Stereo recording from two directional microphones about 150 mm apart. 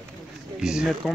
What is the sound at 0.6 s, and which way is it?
Speech, 5° right (ahead or behind).